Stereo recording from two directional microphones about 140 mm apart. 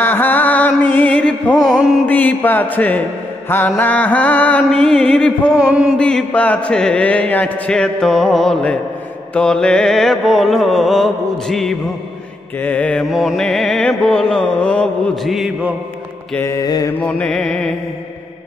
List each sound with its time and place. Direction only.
0.0 s music: 15° left (ahead or behind)
2.0 s mantra: 15° left (ahead or behind)
5.6 s a sound: 5° right (ahead or behind)
5.9 s mantra: 10° left (ahead or behind)
9.3 s music: 5° left (ahead or behind)
12.6 s mantra: 10° left (ahead or behind)
13.1 s music: centre (ahead or behind)
15.3 s music: 5° right (ahead or behind)
16.3 s mantra: 20° left (ahead or behind)
17.0 s music: 10° left (ahead or behind)